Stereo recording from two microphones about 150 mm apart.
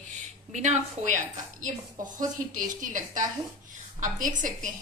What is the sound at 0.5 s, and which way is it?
Speech, 50° right (ahead or behind).